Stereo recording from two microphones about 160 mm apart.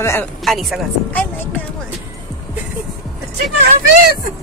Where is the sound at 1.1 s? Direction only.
10° left (ahead or behind).